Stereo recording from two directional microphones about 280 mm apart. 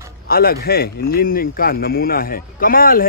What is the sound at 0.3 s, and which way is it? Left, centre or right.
A man's voice, left.